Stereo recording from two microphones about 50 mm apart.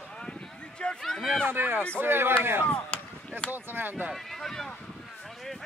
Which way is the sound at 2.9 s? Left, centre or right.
Left.